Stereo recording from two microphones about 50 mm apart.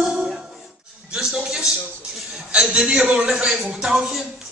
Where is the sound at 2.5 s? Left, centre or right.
Right.